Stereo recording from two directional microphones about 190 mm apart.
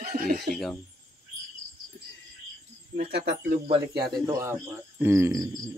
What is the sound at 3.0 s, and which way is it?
Speech, 55° right (ahead or behind).